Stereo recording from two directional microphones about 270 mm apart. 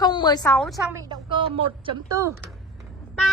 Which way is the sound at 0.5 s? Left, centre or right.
Centre.